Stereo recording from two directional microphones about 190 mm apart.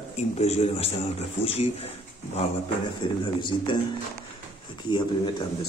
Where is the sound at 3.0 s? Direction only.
25° left (ahead or behind).